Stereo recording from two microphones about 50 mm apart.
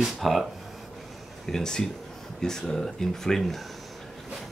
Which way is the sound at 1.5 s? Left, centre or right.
Centre.